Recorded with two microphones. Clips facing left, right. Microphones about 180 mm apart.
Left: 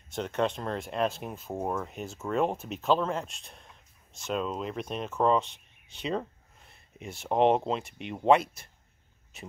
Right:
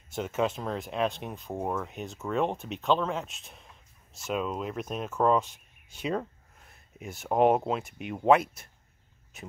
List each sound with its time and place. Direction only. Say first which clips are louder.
0.1 s speech: even; 5° right (ahead or behind)
5.5 s a sound: even; 45° right (ahead or behind)
7.0 s speech: right 1 dB; 5° right (ahead or behind)